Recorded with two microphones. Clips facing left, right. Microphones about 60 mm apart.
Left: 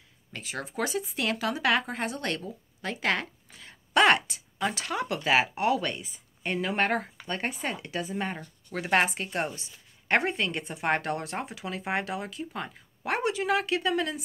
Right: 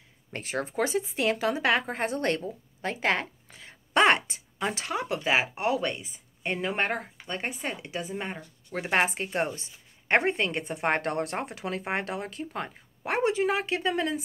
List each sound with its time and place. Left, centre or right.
0.3 s speech: right
0.6 s a woman's voice: right
11.0 s speech: right
12.6 s speech: centre